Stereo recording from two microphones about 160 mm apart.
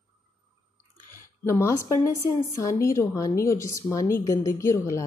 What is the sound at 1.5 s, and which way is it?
A woman's voice, 20° left (ahead or behind).